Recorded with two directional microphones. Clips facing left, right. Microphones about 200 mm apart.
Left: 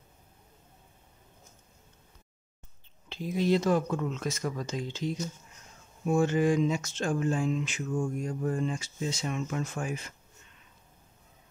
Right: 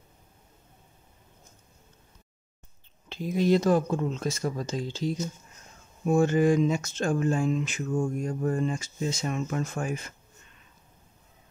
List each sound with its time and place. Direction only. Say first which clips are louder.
3.1 s speech: right 3 dB; 45° right (ahead or behind)